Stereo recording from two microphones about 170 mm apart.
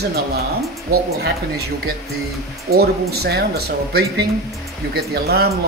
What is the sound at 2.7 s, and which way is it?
Speech, 70° right (ahead or behind).